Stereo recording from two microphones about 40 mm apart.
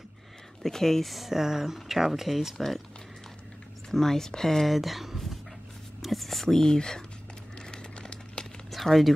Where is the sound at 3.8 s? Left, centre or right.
Centre.